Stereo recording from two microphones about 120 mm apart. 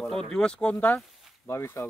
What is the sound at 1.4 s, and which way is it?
Speech, 20° left (ahead or behind).